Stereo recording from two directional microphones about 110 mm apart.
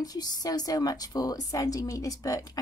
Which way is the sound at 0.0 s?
35° left (ahead or behind).